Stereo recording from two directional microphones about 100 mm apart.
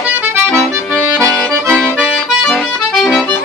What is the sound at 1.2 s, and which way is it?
Accordion, 10° left (ahead or behind).